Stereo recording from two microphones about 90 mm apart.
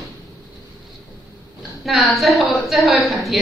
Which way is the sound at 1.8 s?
Centre (ahead or behind).